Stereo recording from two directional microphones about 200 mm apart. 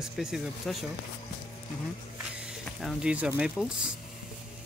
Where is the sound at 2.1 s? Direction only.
5° right (ahead or behind).